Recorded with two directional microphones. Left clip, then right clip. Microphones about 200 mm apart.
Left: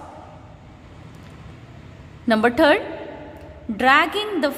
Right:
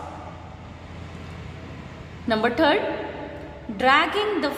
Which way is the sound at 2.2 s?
40° left (ahead or behind).